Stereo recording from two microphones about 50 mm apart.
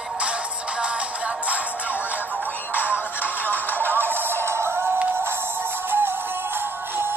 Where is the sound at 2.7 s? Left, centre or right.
Left.